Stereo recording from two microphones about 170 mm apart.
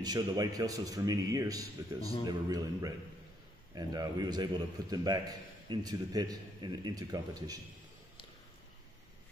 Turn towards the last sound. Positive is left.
turn(degrees=-20)  # may be behind; listen again after turning